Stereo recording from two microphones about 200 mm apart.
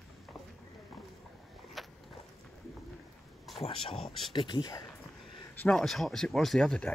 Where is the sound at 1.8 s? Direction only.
Centre (ahead or behind).